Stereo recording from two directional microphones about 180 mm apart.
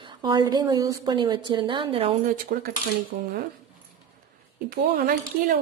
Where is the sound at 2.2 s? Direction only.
50° right (ahead or behind).